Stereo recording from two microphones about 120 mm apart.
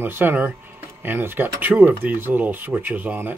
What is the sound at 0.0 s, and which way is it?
Speech, 15° right (ahead or behind).